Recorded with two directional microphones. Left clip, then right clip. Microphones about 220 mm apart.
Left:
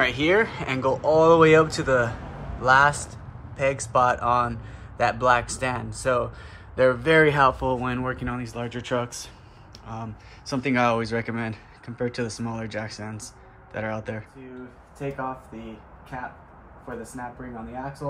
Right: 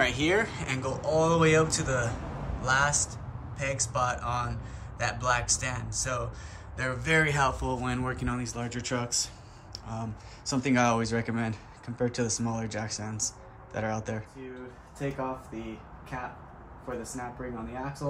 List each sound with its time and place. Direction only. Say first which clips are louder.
0.0 s a man's voice: left 5 dB; centre (ahead or behind)